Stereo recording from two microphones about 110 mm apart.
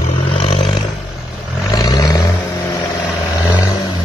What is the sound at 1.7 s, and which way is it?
Vehicle, 35° left (ahead or behind).